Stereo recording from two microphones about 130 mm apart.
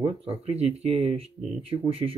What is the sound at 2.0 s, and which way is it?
Speech, 30° right (ahead or behind).